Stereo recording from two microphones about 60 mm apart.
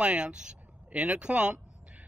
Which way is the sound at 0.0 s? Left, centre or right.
Centre.